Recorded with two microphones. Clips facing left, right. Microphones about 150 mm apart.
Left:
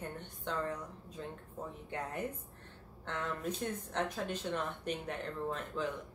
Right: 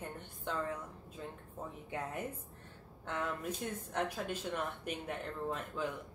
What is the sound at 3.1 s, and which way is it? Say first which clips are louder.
A woman's voice: even; 10° right (ahead or behind).